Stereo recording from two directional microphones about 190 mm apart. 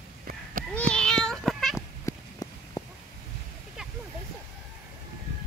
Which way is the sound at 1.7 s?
15° left (ahead or behind).